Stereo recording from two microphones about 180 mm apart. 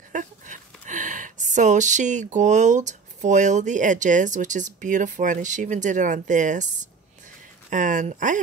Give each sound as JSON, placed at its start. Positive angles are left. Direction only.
{"t": 0.1, "sound": "speech", "side_deg": -45}